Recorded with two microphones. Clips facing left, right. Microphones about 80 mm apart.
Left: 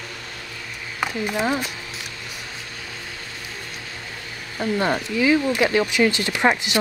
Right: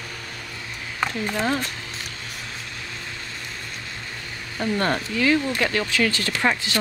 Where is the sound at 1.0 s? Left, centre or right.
Centre.